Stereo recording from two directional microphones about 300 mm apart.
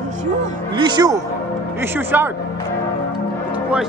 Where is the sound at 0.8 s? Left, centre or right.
Centre.